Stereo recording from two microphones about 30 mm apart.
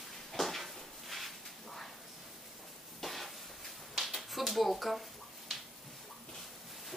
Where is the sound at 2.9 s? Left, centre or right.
Centre.